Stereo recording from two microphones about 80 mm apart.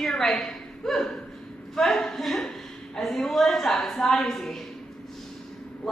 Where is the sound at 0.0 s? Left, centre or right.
Centre.